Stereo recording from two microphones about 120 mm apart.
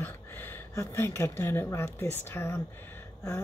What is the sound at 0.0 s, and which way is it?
Speech, 15° left (ahead or behind).